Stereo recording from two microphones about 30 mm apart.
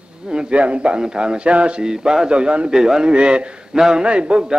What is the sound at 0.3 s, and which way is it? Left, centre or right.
Speech, right.